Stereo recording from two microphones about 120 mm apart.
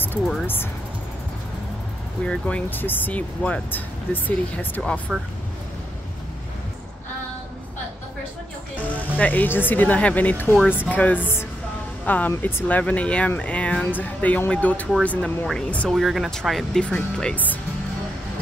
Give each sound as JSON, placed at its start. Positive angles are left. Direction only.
{"t": 2.2, "sound": "speech", "side_deg": 10}
{"t": 8.8, "sound": "speech", "side_deg": 15}